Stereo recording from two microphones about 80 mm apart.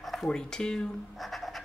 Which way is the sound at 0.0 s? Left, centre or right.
Centre.